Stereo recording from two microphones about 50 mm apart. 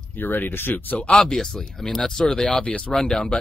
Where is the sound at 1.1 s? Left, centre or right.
Centre.